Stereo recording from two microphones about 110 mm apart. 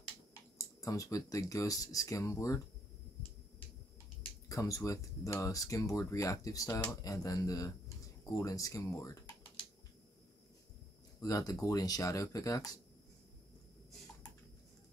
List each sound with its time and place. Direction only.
0.3 s speech: 30° left (ahead or behind)
4.5 s speech: 30° left (ahead or behind)
11.1 s speech: 35° left (ahead or behind)